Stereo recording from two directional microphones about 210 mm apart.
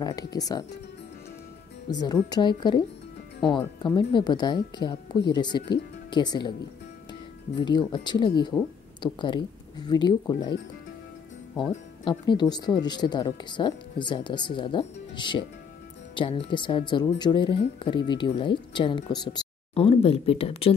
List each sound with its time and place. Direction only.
0.0 s speech: 20° left (ahead or behind)
1.9 s speech: 20° left (ahead or behind)
7.5 s speech: 20° left (ahead or behind)
11.7 s speech: 25° left (ahead or behind)